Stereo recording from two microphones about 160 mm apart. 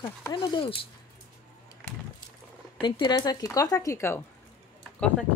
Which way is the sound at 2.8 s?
30° left (ahead or behind).